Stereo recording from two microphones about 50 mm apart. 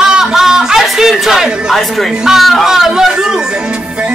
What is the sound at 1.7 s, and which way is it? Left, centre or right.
Speech, centre.